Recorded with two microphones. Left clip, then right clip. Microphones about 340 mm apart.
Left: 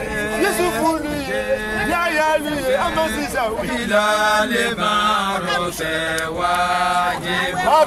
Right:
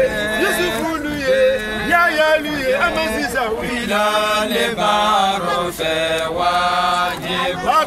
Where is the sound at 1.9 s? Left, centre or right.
Centre.